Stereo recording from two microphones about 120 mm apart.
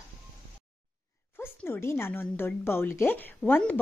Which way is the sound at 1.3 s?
20° left (ahead or behind).